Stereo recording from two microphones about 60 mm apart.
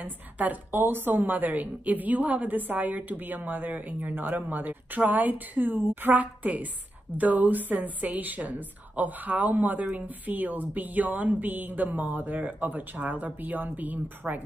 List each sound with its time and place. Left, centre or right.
0.0 s a woman's voice: right